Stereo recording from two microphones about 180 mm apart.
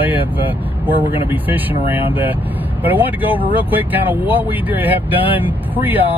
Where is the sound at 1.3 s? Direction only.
10° right (ahead or behind).